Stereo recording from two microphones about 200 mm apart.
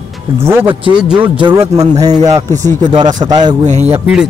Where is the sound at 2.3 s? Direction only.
15° right (ahead or behind).